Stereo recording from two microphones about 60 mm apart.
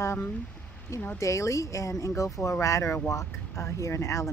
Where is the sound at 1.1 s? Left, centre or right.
Left.